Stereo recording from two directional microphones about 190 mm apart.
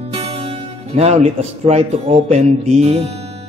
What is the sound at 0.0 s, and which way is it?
Music, 30° right (ahead or behind).